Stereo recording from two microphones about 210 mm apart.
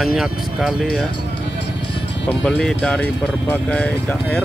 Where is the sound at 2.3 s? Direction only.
5° left (ahead or behind).